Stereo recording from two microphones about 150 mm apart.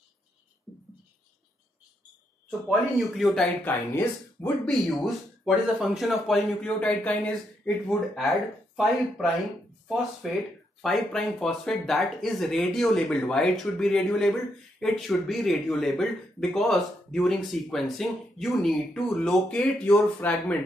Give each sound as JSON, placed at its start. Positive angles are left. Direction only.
{"t": 3.0, "sound": "speech", "side_deg": 0}
{"t": 3.6, "sound": "speech", "side_deg": 15}
{"t": 4.6, "sound": "speech", "side_deg": 0}
{"t": 10.8, "sound": "speech", "side_deg": 0}